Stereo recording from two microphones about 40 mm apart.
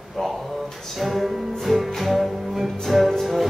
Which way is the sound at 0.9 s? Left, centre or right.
Centre.